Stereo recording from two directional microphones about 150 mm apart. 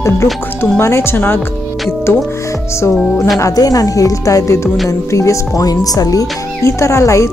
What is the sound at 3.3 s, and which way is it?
Speech, 25° left (ahead or behind).